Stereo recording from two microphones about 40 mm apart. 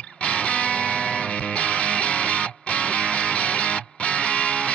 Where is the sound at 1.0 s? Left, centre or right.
Centre.